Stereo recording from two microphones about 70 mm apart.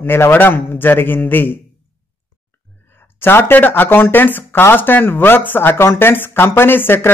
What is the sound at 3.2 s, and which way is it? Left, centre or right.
Speech, left.